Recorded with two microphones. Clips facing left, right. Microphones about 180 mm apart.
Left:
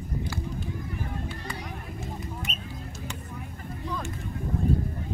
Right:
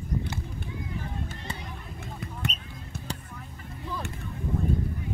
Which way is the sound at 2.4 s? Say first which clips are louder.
Right 5 dB; 65° right (ahead or behind).